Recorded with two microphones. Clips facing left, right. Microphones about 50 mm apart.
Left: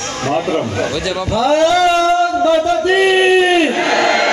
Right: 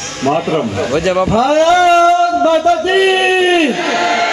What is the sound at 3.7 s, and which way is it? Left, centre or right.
Speech, centre.